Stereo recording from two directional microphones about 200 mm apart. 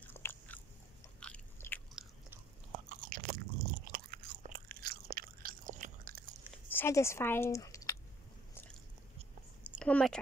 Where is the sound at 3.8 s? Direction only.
45° right (ahead or behind).